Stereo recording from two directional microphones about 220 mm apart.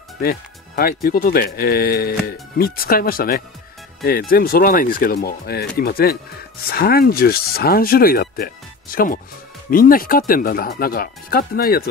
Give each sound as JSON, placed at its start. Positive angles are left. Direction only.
{"t": 0.2, "sound": "speech", "side_deg": 45}